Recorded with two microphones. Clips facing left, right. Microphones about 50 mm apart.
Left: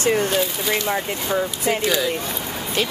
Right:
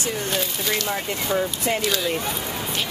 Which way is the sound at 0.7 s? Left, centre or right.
Centre.